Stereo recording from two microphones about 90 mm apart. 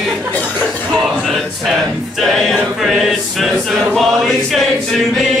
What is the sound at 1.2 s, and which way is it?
Choir, centre (ahead or behind).